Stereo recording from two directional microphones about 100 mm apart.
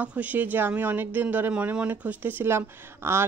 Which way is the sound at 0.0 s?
15° right (ahead or behind).